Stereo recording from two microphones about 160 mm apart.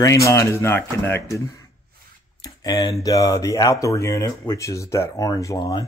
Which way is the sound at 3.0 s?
20° left (ahead or behind).